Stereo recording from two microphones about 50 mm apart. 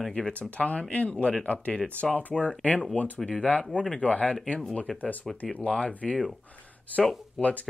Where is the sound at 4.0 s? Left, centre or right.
Left.